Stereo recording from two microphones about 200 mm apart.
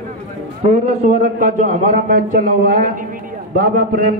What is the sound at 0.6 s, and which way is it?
A man's voice, 35° right (ahead or behind).